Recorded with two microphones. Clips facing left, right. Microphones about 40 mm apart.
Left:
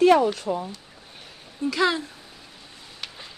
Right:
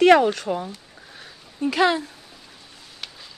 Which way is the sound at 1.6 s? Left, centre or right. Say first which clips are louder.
Right 3 dB; right.